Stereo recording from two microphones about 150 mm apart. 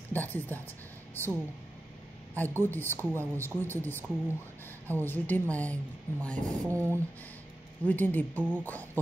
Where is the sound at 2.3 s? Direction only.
10° left (ahead or behind).